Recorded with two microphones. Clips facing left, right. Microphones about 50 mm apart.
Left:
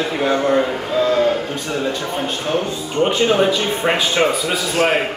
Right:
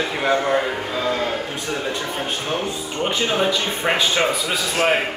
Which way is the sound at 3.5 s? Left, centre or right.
Centre.